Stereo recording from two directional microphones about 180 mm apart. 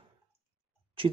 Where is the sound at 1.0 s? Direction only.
30° right (ahead or behind).